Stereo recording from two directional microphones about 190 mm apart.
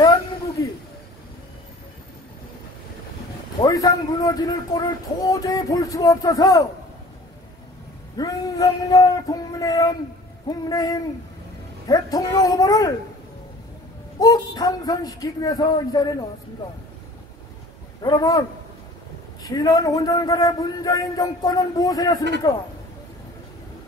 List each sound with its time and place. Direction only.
3.6 s speech: 20° left (ahead or behind)
8.2 s speech: 20° left (ahead or behind)
14.2 s speech: 20° left (ahead or behind)
18.0 s speech: 20° left (ahead or behind)
19.4 s speech: 20° left (ahead or behind)